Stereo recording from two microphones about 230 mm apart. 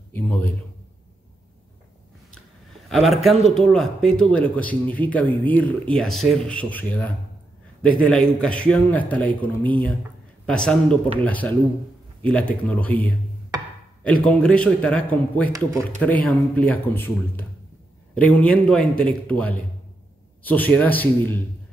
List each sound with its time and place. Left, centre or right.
0.1 s a man's voice: centre
2.9 s a man's voice: centre
13.5 s a sound: centre
14.2 s a man's voice: centre